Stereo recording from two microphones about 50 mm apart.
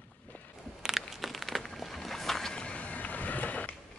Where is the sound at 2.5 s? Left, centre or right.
Left.